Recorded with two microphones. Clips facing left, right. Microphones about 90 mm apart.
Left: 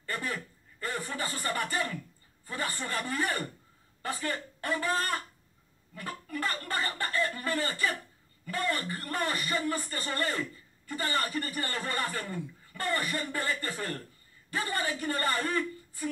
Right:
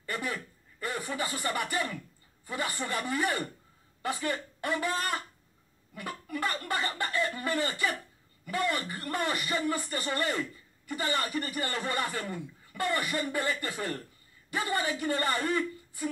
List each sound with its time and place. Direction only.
0.0 s chuckle: 15° right (ahead or behind)
2.4 s speech: 15° right (ahead or behind)